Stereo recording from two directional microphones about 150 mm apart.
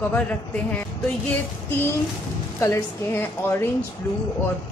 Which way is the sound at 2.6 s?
20° left (ahead or behind).